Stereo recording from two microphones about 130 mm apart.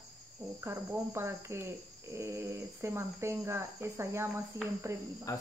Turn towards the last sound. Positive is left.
turn(degrees=25)  # may be behind; listen again after turning